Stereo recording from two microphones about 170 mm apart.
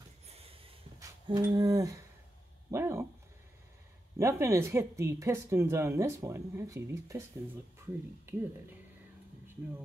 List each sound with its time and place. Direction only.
0.3 s snort: 35° right (ahead or behind)
0.9 s humming: 25° right (ahead or behind)
2.7 s speech: 15° right (ahead or behind)
4.2 s speech: 15° right (ahead or behind)
8.3 s speech: 15° right (ahead or behind)